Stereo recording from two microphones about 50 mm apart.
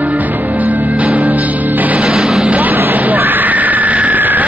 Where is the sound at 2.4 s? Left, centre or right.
Right.